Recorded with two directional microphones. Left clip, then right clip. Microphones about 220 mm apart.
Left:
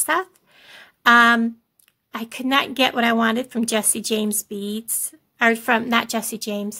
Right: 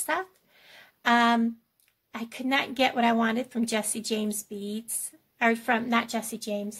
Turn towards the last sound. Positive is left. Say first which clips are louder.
# left 5 dB
turn(degrees=35)  # may be behind; listen again after turning